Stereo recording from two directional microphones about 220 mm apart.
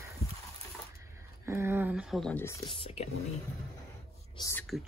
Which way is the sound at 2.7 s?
25° left (ahead or behind).